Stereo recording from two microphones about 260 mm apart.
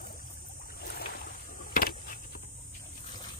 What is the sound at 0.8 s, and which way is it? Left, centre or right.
Boat, left.